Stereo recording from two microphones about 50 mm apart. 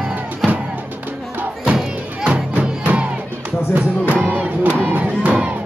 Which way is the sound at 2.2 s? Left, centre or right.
Right.